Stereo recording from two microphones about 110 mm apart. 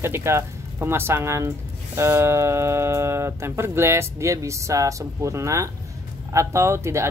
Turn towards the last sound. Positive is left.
turn(degrees=-25)  # may be behind; listen again after turning